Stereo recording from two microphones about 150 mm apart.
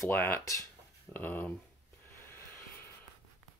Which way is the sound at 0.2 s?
15° left (ahead or behind).